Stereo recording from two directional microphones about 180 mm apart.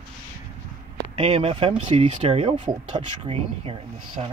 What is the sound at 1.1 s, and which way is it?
Speech, 35° right (ahead or behind).